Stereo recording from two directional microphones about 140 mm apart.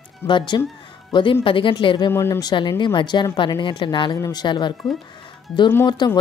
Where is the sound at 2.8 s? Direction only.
35° left (ahead or behind).